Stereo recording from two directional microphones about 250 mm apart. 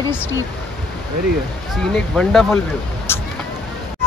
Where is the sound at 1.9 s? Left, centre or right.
Centre.